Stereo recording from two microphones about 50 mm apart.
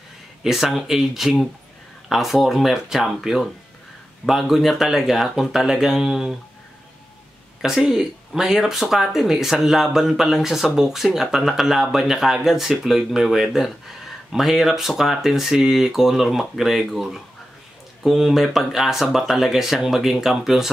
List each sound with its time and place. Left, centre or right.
0.4 s speech: centre
7.6 s speech: centre